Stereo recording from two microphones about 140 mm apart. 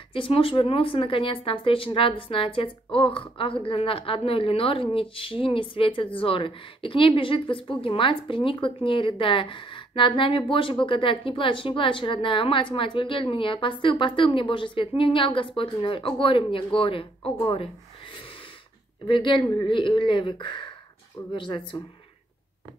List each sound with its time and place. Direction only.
0.1 s a woman's voice: 40° left (ahead or behind)
19.0 s a woman's voice: 35° left (ahead or behind)